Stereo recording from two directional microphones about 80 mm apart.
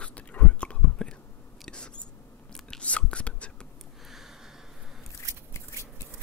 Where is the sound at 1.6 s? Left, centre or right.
Centre.